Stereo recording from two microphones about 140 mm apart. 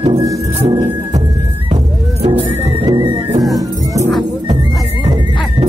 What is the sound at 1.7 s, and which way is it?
Music, 45° right (ahead or behind).